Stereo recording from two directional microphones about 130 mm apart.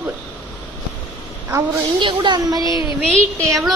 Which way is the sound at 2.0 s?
40° right (ahead or behind).